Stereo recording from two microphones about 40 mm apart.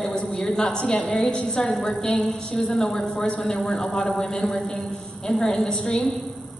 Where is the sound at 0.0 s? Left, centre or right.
Centre.